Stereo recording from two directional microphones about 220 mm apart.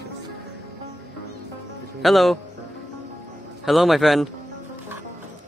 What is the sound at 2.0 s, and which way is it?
Speech, centre (ahead or behind).